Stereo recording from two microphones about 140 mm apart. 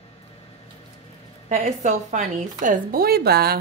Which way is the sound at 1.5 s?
60° right (ahead or behind).